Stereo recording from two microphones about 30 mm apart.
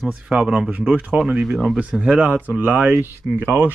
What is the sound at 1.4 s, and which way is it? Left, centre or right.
Speech, centre.